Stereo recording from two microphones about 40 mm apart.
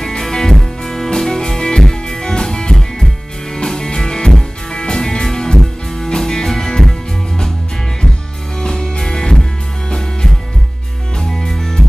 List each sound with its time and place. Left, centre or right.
0.0 s music: centre
8.5 s music: centre